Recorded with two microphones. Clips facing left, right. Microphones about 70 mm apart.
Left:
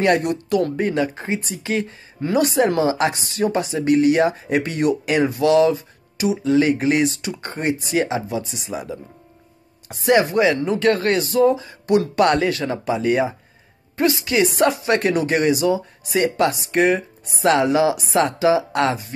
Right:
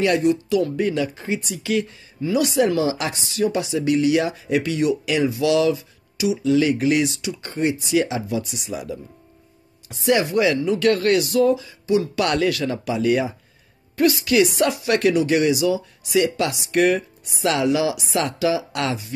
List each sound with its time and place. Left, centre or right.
0.0 s speech: left
0.7 s speech: left
16.7 s speech: left